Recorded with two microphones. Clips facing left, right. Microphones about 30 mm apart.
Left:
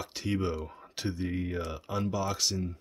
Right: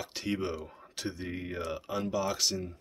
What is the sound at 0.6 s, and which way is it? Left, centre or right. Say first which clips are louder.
Speech: left 2 dB; centre.